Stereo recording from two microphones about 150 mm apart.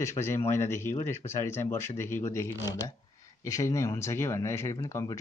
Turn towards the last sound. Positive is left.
turn(degrees=20)  # may be behind; listen again after turning